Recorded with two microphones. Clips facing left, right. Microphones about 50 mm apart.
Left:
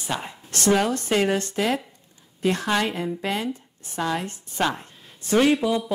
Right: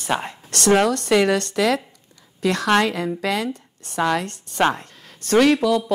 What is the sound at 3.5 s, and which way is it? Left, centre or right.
Speech, right.